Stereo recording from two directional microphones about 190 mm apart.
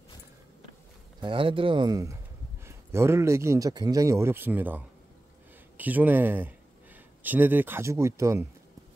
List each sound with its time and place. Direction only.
1.2 s a man's voice: 25° right (ahead or behind)